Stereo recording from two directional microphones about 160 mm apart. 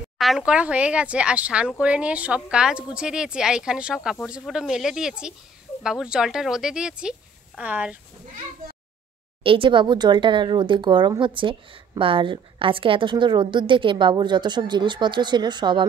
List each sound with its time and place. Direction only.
0.5 s speech: 5° right (ahead or behind)
9.4 s speech: 35° right (ahead or behind)